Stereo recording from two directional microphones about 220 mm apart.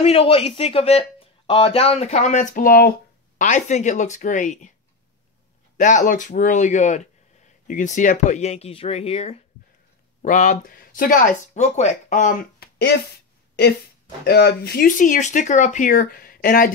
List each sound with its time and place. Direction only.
0.0 s speech: 25° left (ahead or behind)
5.8 s speech: 35° left (ahead or behind)
14.2 s speech: 45° left (ahead or behind)